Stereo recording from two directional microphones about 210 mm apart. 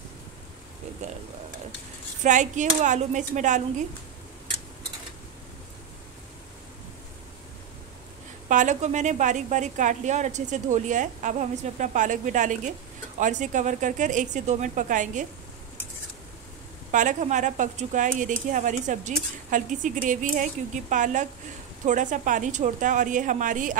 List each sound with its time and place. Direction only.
1.0 s speech: 30° right (ahead or behind)
2.2 s speech: 35° right (ahead or behind)
8.5 s speech: 35° right (ahead or behind)
16.9 s speech: 35° right (ahead or behind)